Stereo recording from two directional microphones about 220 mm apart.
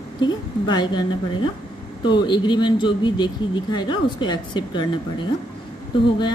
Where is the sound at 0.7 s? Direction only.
20° left (ahead or behind).